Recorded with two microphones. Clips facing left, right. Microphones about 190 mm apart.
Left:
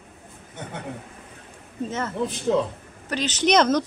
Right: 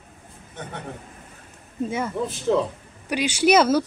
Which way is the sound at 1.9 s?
10° right (ahead or behind).